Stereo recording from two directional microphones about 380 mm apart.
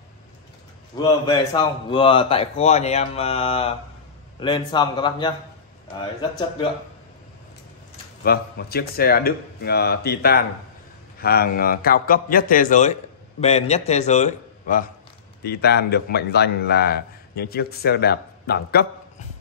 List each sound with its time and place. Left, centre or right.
0.9 s a man's voice: centre
8.2 s a man's voice: left